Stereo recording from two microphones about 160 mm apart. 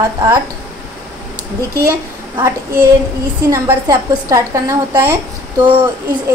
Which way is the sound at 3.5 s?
20° right (ahead or behind).